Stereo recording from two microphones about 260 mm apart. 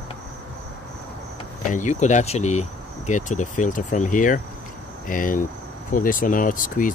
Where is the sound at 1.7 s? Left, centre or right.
Left.